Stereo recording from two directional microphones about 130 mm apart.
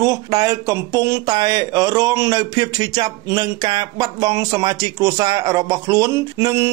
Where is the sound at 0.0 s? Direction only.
25° right (ahead or behind).